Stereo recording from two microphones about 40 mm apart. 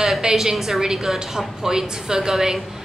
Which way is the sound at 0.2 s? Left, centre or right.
Centre.